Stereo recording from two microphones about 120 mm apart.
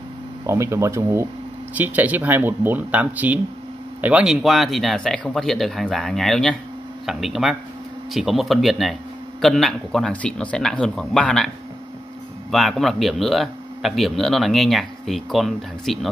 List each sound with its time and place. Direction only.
0.5 s speech: 25° right (ahead or behind)
1.8 s a man's voice: 15° right (ahead or behind)